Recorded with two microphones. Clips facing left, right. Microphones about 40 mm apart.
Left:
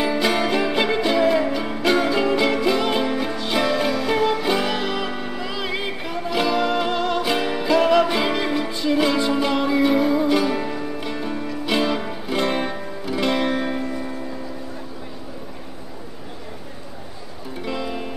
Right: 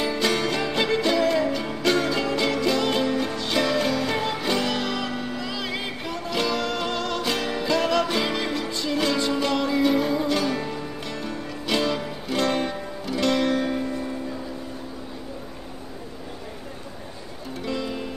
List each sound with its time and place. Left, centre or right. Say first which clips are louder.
0.0 s music: left 3 dB; centre
17.6 s music: left 2 dB; centre